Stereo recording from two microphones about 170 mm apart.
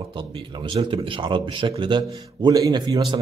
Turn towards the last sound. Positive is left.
turn(degrees=-25)  # may be behind; listen again after turning